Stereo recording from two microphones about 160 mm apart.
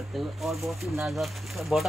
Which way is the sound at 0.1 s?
Centre (ahead or behind).